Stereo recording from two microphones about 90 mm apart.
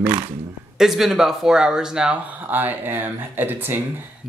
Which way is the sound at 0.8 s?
5° right (ahead or behind).